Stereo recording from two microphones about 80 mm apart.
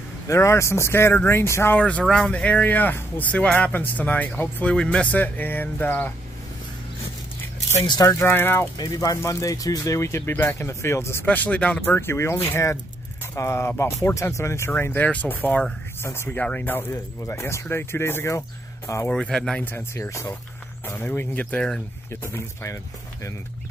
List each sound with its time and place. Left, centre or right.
0.3 s speech: left
1.8 s speech: centre
8.2 s speech: left
8.7 s speech: left
11.2 s speech: centre
11.8 s speech: left
14.7 s speech: left
16.3 s speech: centre
16.9 s speech: left
19.0 s speech: centre
19.6 s speech: left
22.1 s speech: left